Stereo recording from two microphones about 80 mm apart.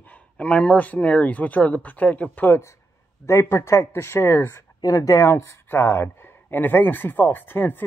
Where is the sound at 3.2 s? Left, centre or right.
Left.